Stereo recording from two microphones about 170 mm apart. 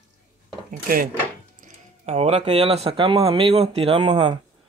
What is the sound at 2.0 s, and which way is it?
Speech, 35° right (ahead or behind).